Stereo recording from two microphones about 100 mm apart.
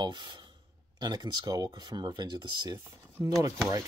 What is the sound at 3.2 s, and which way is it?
Speech, 25° right (ahead or behind).